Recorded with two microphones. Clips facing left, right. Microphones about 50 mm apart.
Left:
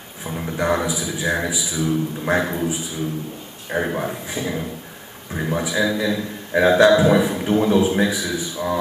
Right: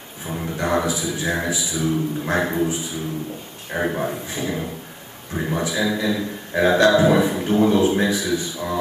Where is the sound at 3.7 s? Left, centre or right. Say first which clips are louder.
Even; centre.